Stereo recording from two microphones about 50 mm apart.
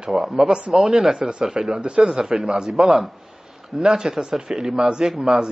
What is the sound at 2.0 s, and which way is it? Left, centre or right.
Speech, centre.